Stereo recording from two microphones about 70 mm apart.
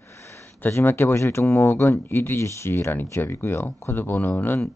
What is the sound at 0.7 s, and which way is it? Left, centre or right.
Speech, left.